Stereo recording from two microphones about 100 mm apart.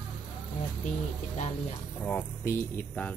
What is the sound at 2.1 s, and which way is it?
Speech, 20° left (ahead or behind).